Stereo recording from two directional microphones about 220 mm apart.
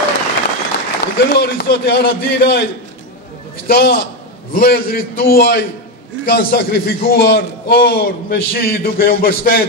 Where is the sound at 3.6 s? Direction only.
45° left (ahead or behind).